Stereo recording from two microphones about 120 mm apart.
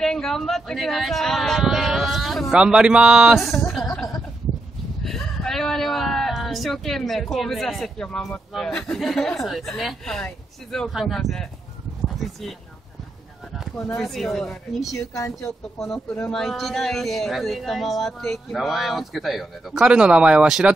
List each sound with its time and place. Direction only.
0.0 s speech: 5° left (ahead or behind)
3.7 s music: centre (ahead or behind)
5.0 s speech: centre (ahead or behind)
13.7 s speech: 5° left (ahead or behind)
14.9 s speech: 25° left (ahead or behind)
15.8 s speech: centre (ahead or behind)